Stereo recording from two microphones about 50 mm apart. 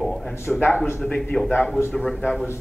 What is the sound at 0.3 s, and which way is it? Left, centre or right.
Speech, left.